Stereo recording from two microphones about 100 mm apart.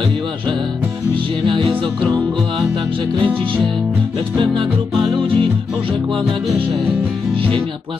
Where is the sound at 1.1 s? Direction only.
60° right (ahead or behind).